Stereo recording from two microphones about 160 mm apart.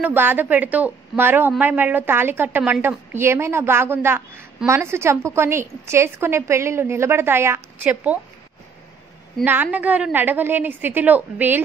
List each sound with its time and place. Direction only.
0.0 s a woman's voice: 10° right (ahead or behind)
9.4 s a woman's voice: 10° right (ahead or behind)